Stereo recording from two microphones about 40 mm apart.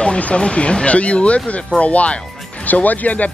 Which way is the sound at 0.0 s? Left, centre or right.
Left.